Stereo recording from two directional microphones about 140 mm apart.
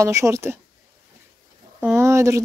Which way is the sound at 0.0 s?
20° right (ahead or behind).